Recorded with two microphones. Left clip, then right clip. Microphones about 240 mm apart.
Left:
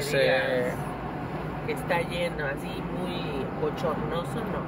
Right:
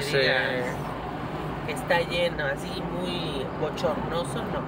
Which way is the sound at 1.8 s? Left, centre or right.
Right.